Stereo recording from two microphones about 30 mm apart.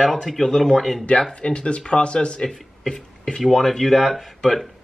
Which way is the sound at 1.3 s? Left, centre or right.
Left.